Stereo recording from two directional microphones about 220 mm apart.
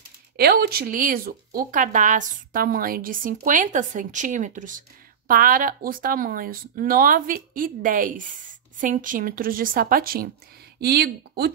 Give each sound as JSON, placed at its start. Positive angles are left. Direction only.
{"t": 0.4, "sound": "speech", "side_deg": -45}